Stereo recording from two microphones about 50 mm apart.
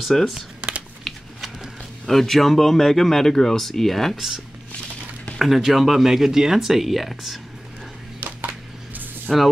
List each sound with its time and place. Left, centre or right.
0.0 s speech: centre
5.4 s speech: centre
8.2 s a sound: right
9.3 s speech: centre